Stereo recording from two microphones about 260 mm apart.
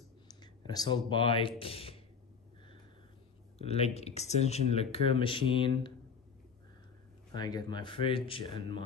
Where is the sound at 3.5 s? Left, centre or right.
Left.